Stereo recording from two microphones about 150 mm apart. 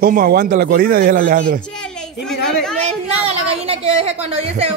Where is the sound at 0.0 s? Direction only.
85° right; by 1.6 s 70° right (ahead or behind).